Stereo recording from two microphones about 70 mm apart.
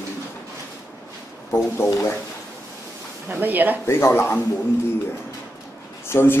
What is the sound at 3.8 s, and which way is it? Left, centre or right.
Speech, left.